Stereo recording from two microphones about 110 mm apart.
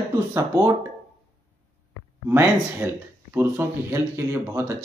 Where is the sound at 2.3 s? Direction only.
25° right (ahead or behind).